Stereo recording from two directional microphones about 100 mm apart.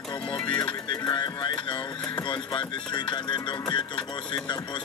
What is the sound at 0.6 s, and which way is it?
Music, 40° left (ahead or behind).